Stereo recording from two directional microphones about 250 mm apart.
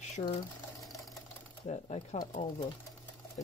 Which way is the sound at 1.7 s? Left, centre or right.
Left.